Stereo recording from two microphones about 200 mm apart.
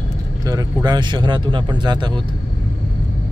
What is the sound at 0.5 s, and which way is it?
A man's voice, 15° right (ahead or behind).